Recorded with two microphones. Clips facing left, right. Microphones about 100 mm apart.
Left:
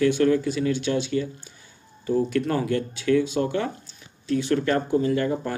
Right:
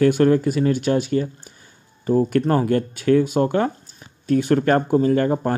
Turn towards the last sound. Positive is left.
turn(degrees=-45)  # may be behind; listen again after turning